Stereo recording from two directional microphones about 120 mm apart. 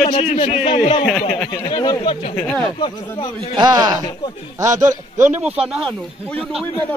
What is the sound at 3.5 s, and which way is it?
A man's voice, 35° right (ahead or behind).